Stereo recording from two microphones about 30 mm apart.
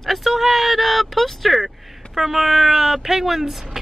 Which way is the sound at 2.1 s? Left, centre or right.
Centre.